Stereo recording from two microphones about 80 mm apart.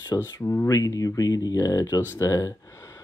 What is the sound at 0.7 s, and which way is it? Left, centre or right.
Speech, left.